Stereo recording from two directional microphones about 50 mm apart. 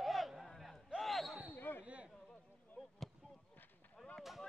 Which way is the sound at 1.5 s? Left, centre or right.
Left.